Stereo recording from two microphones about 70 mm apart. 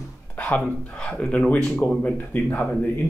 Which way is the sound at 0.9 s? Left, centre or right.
Centre.